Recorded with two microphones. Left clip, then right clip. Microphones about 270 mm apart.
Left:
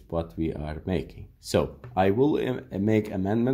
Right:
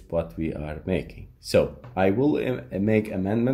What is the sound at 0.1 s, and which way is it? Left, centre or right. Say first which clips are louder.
Speech: right 2 dB; left.